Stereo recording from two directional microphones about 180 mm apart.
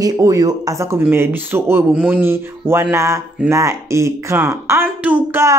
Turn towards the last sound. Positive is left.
turn(degrees=-10)  # may be behind; listen again after turning